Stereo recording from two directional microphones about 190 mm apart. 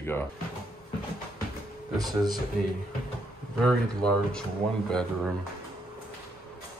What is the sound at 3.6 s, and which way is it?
Speech, 5° left (ahead or behind).